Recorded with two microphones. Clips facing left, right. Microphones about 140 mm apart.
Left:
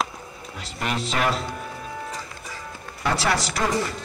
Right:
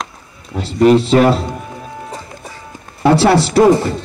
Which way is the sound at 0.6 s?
30° right (ahead or behind).